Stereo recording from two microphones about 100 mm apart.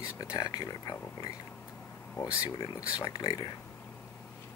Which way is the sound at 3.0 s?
45° left (ahead or behind).